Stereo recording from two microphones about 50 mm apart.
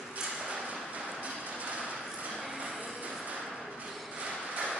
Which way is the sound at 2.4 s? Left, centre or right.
Centre.